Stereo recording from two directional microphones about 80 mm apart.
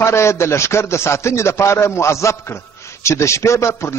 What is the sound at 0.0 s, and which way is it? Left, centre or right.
A man's voice, left.